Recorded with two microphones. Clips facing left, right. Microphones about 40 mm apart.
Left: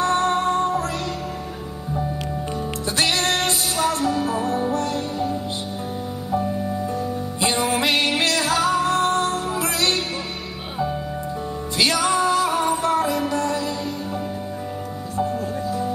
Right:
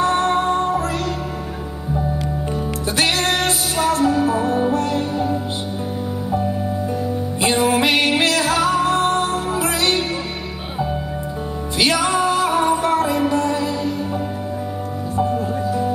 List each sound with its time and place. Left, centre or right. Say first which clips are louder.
0.0 s music: right 2 dB; right
3.0 s music: right 2 dB; centre
7.4 s music: right 4 dB; right
11.8 s music: right 2 dB; right
15.1 s music: right 4 dB; right